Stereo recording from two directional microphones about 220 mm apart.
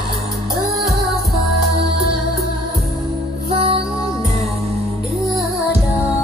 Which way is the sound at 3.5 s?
25° right (ahead or behind).